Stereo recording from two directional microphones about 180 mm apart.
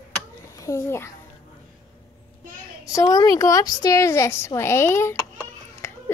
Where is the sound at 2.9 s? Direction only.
20° left (ahead or behind).